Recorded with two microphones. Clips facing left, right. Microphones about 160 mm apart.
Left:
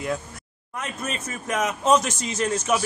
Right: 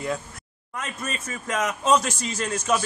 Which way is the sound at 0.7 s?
15° left (ahead or behind).